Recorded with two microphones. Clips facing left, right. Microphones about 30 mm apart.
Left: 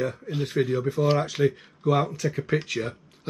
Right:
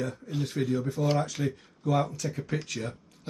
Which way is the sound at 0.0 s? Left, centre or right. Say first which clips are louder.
Left 4 dB; left.